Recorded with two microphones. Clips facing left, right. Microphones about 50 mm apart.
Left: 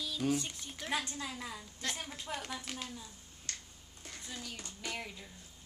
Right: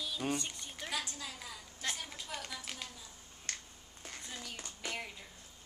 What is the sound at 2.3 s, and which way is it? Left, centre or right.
Speech, centre.